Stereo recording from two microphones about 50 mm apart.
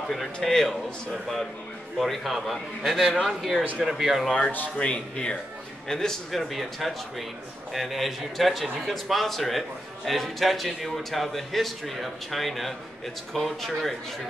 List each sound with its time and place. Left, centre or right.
0.1 s a man's voice: centre
2.0 s a man's voice: centre
4.7 s speech: left
5.9 s a man's voice: centre